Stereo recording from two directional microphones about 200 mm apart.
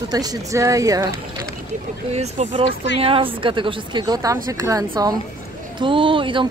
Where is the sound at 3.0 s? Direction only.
25° right (ahead or behind).